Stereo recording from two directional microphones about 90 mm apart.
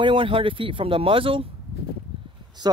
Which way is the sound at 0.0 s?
75° right (ahead or behind).